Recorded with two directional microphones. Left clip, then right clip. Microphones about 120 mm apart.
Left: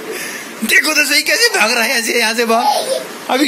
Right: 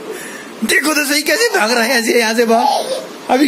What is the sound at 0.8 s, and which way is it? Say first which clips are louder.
Speech: left 2 dB; 55° right (ahead or behind).